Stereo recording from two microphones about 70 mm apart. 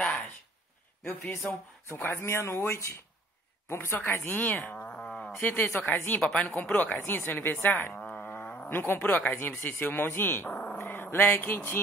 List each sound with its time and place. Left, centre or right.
1.3 s a woman's voice: left; by 5.4 s centre
5.4 s speech: left
8.2 s a sound: left
9.5 s speech: left